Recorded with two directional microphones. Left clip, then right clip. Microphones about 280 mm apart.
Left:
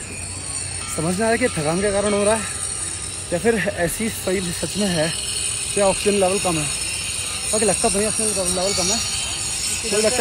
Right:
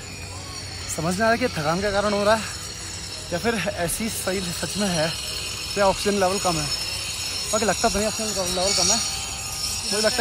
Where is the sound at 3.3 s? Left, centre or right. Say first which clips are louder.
Left 5 dB; centre.